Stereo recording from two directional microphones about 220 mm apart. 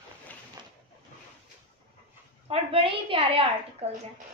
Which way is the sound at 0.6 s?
20° right (ahead or behind).